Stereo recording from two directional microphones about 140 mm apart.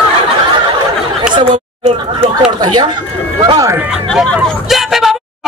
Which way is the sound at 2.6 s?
35° right (ahead or behind).